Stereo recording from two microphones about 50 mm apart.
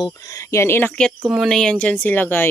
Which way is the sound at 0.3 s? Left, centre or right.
Left.